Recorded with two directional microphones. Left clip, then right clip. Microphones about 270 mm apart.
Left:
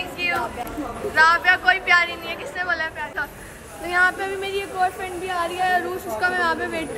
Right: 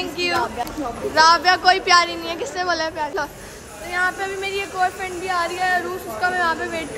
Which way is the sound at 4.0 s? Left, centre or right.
Centre.